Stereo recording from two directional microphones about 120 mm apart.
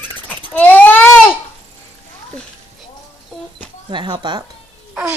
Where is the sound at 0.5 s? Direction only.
15° left (ahead or behind).